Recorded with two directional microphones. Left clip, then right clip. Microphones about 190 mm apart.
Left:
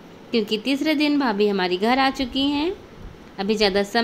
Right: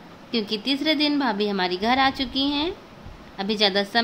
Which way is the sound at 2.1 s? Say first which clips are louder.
Left 1 dB; 50° right (ahead or behind).